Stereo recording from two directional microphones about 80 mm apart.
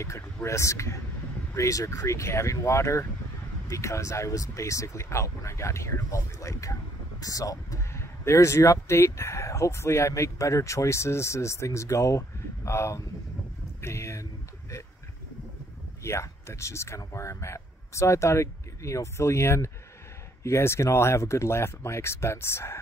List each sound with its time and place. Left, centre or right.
0.0 s speech: left
13.7 s a sound: left
16.0 s speech: left